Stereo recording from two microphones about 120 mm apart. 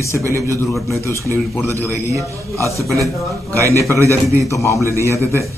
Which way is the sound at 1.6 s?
25° right (ahead or behind).